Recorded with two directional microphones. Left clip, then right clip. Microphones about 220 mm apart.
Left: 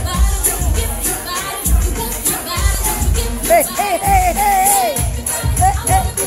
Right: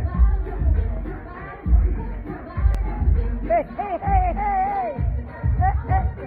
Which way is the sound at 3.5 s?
20° left (ahead or behind).